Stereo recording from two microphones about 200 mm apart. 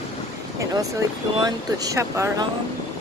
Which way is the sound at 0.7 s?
15° right (ahead or behind).